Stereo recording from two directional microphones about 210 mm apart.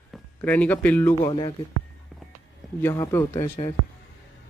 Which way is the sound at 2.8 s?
10° left (ahead or behind).